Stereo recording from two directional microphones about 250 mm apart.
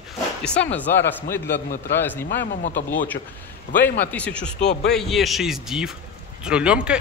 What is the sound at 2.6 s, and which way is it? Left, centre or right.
Speech, left.